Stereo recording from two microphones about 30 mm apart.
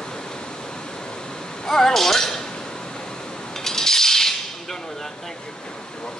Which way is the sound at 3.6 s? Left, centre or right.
Centre.